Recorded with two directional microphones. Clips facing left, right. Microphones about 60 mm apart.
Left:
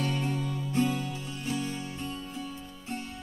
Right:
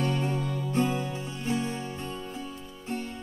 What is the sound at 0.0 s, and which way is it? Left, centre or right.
Music, right.